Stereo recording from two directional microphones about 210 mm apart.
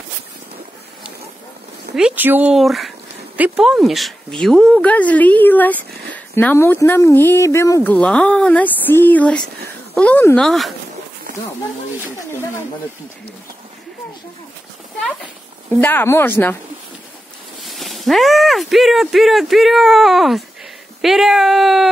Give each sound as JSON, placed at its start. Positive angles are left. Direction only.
{"t": 2.0, "sound": "speech", "side_deg": -5}
{"t": 15.8, "sound": "speech", "side_deg": 10}
{"t": 17.6, "sound": "speech", "side_deg": 0}